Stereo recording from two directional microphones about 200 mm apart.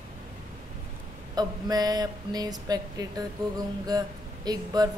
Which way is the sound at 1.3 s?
20° right (ahead or behind).